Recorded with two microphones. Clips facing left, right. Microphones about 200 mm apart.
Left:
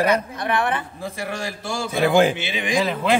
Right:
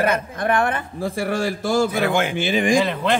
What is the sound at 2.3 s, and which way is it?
Speech, 50° right (ahead or behind).